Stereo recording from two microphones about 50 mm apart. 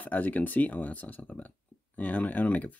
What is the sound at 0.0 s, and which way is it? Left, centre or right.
Speech, left.